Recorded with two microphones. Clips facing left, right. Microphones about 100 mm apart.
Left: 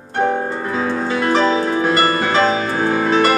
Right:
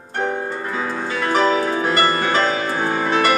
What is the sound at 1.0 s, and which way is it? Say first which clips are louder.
Music: left 1 dB; 25° left (ahead or behind).